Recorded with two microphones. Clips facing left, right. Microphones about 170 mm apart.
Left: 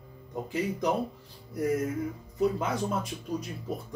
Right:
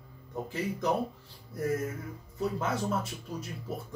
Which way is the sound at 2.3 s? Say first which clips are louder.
Left 4 dB; 15° left (ahead or behind).